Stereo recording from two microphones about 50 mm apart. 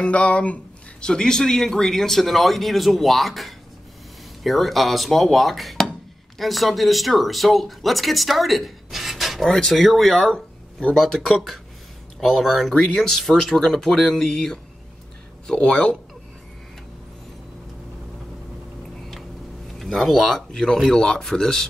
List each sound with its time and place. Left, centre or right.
0.0 s speech: left
1.0 s speech: centre
15.5 s speech: left
18.9 s a sound: centre
19.7 s speech: centre